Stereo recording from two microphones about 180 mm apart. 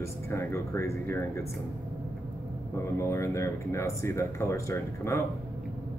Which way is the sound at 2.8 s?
15° left (ahead or behind).